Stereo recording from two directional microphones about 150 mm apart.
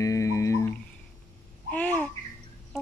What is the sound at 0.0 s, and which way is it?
Music, 20° left (ahead or behind).